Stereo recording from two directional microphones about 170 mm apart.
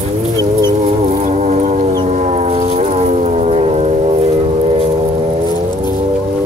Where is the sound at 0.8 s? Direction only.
40° right (ahead or behind).